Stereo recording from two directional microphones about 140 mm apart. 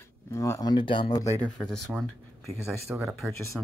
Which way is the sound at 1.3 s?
10° left (ahead or behind).